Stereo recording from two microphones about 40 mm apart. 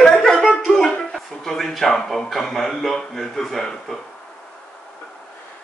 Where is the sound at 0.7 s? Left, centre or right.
Centre.